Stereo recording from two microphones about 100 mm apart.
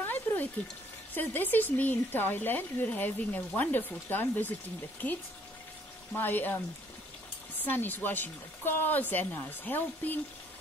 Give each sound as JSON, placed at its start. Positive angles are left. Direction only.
{"t": 0.0, "sound": "a sound", "side_deg": 20}
{"t": 1.1, "sound": "speech", "side_deg": 20}
{"t": 7.6, "sound": "speech", "side_deg": 20}